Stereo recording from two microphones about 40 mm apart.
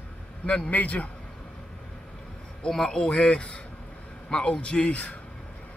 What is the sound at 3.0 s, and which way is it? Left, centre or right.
Speech, left.